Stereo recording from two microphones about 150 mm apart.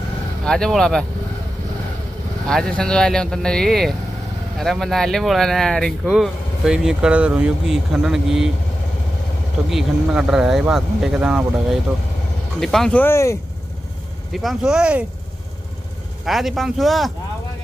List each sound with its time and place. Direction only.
0.5 s speech: 5° left (ahead or behind)
2.4 s speech: 5° left (ahead or behind)
9.7 s speech: 5° right (ahead or behind)
13.0 s speech: 20° left (ahead or behind)
14.3 s speech: centre (ahead or behind)
16.3 s speech: centre (ahead or behind)